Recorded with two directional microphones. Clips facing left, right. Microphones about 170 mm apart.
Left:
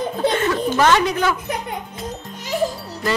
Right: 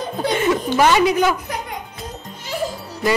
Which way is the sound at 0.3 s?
15° right (ahead or behind).